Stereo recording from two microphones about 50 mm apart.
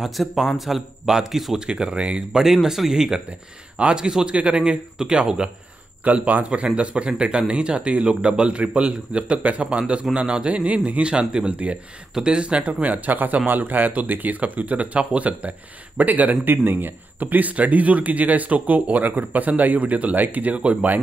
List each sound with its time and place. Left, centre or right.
0.0 s speech: centre; by 2.4 s right
2.4 s speech: centre
3.3 s speech: right
6.0 s speech: right
13.0 s speech: right
16.4 s speech: right